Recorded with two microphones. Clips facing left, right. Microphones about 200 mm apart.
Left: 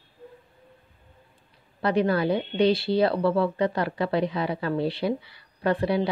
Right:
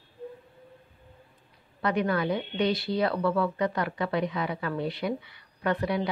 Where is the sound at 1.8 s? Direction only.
30° left (ahead or behind).